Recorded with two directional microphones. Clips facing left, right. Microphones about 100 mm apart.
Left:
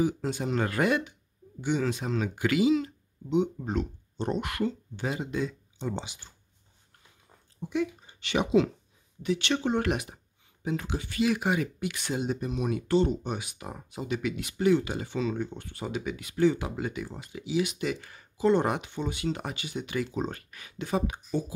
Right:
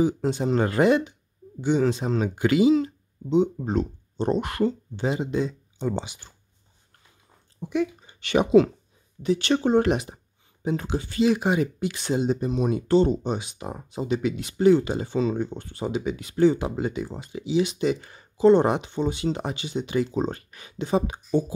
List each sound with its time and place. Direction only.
0.0 s speech: 25° right (ahead or behind)
5.8 s speech: 50° right (ahead or behind)
7.7 s speech: 50° right (ahead or behind)
9.2 s speech: 35° right (ahead or behind)